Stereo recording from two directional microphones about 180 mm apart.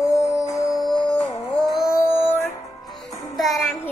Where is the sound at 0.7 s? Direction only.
5° left (ahead or behind).